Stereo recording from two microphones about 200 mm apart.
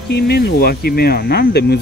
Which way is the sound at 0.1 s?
55° left (ahead or behind).